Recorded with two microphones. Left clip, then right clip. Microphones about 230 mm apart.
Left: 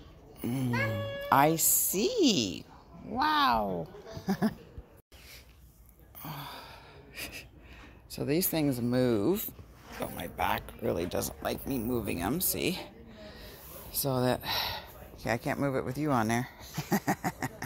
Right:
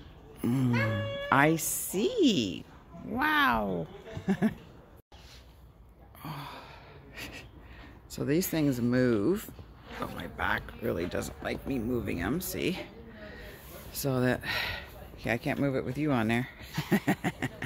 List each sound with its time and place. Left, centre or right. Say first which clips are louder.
0.4 s music: right 4 dB; right
1.3 s speech: left 1 dB; centre
6.2 s gasp: even; centre
8.2 s speech: right 1 dB; centre
16.9 s a sound: right 1 dB; centre